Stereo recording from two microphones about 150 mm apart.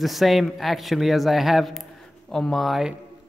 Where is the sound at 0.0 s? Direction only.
Centre (ahead or behind).